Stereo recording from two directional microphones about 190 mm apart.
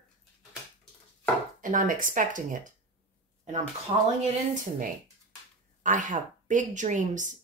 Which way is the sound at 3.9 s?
30° right (ahead or behind).